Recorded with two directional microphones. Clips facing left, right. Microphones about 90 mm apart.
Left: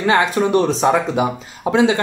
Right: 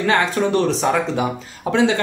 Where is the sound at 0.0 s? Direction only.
20° left (ahead or behind).